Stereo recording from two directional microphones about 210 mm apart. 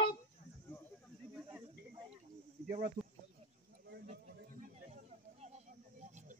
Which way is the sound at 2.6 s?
40° right (ahead or behind).